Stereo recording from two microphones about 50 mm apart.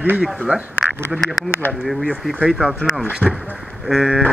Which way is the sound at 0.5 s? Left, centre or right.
Right.